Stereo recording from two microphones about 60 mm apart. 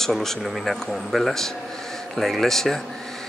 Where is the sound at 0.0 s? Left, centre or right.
Centre.